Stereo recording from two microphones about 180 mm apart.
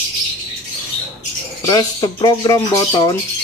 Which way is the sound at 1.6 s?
25° left (ahead or behind).